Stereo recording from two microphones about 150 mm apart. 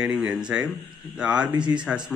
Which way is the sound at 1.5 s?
30° right (ahead or behind).